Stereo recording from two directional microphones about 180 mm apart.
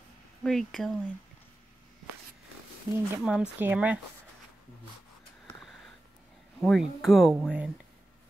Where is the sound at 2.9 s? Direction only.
15° right (ahead or behind).